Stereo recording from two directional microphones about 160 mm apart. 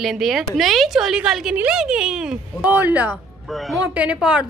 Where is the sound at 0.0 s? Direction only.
Centre (ahead or behind).